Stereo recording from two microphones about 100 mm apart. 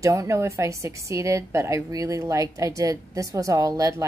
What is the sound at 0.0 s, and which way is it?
A woman's voice, 30° right (ahead or behind).